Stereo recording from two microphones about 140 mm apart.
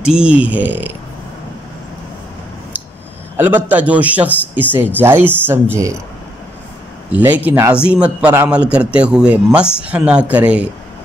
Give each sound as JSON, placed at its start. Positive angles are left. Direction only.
{"t": 0.1, "sound": "a man's voice", "side_deg": -10}
{"t": 3.3, "sound": "a man's voice", "side_deg": -10}
{"t": 7.1, "sound": "a man's voice", "side_deg": -10}